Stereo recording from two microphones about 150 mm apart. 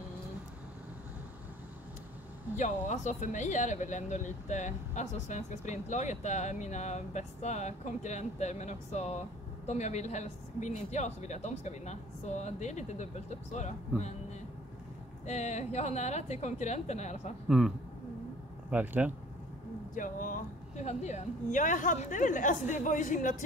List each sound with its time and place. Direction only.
2.5 s speech: 55° left (ahead or behind)
15.2 s speech: 50° left (ahead or behind)
17.5 s a man's voice: 5° right (ahead or behind)
19.9 s speech: 60° left (ahead or behind)